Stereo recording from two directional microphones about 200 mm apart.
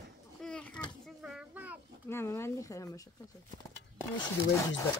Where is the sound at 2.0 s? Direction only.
15° left (ahead or behind).